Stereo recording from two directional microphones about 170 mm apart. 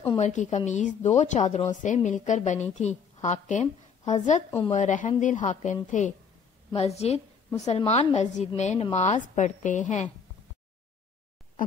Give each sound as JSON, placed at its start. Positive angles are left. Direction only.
{"t": 0.2, "sound": "a woman's voice", "side_deg": 45}